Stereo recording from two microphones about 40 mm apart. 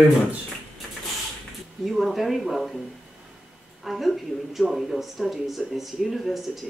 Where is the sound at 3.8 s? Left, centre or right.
Centre.